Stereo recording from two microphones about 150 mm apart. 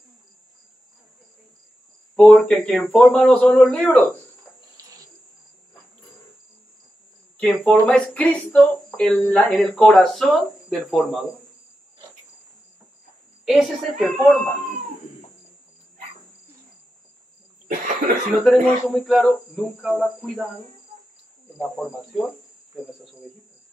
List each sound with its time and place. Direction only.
2.1 s a man's voice: 5° left (ahead or behind)
4.8 s cricket: 20° right (ahead or behind)
7.3 s a man's voice: 5° left (ahead or behind)
9.6 s cricket: 5° left (ahead or behind)
13.5 s cricket: centre (ahead or behind)
17.6 s cough: 60° right (ahead or behind)
18.4 s cricket: centre (ahead or behind)
21.5 s cricket: centre (ahead or behind)